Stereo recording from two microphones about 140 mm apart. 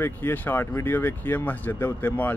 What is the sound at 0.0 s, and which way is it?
Speech, 15° left (ahead or behind).